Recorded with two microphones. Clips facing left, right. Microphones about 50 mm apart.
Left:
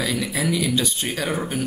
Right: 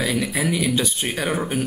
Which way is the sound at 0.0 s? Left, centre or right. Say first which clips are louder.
Right 2 dB; centre.